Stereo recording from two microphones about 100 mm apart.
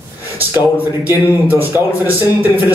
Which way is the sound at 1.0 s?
20° right (ahead or behind).